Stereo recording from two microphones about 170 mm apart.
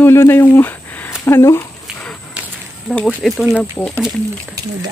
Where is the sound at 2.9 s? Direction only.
5° left (ahead or behind).